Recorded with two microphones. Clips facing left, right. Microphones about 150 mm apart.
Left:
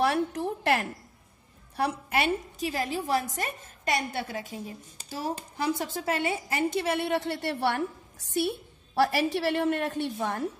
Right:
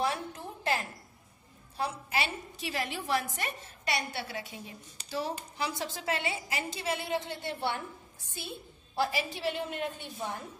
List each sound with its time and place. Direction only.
0.0 s a woman's voice: 70° left (ahead or behind)
1.8 s a woman's voice: 60° left (ahead or behind)